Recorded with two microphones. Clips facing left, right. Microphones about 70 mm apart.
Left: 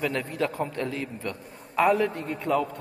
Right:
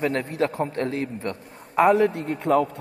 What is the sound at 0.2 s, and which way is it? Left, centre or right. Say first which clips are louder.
Speech: right 4 dB; right.